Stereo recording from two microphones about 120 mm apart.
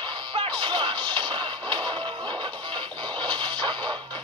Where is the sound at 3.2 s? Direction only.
40° right (ahead or behind).